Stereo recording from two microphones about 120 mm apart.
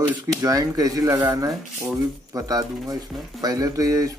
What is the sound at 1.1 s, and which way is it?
Speech, 15° right (ahead or behind).